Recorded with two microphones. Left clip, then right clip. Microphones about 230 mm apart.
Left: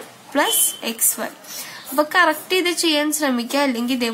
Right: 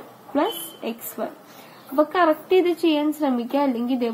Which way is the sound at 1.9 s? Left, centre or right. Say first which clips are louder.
Left 2 dB; left.